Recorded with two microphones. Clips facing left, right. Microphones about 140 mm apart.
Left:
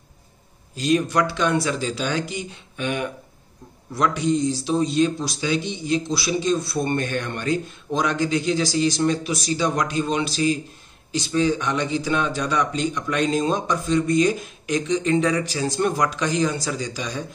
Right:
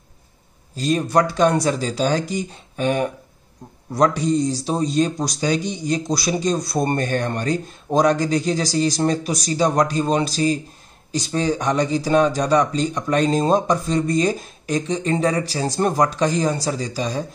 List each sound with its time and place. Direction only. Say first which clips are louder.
0.7 s speech: right 2 dB; 35° right (ahead or behind)